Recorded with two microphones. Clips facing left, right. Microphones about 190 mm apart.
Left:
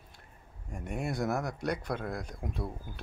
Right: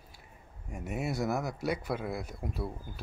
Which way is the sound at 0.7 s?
5° right (ahead or behind).